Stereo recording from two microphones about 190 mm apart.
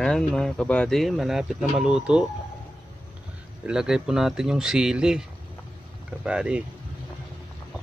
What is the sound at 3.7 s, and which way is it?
Speech, 5° right (ahead or behind).